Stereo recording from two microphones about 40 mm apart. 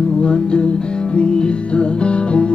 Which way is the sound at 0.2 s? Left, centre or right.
Left.